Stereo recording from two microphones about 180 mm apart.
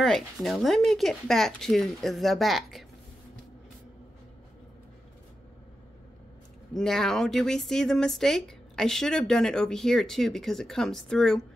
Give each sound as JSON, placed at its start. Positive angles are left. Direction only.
{"t": 0.0, "sound": "speech", "side_deg": 0}
{"t": 6.7, "sound": "speech", "side_deg": 0}